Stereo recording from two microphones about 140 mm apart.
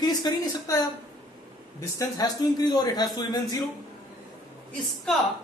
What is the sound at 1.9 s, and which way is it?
A man's voice, 25° left (ahead or behind).